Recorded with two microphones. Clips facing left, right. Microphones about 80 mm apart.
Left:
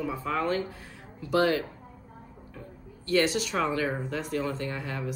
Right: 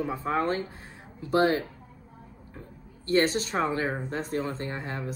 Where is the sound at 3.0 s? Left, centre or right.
Right.